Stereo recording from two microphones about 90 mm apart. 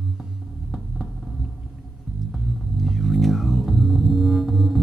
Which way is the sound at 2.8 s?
Centre (ahead or behind).